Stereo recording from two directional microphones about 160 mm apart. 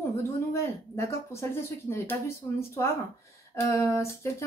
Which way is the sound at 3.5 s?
15° left (ahead or behind).